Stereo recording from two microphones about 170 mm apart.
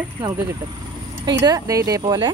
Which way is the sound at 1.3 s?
20° right (ahead or behind).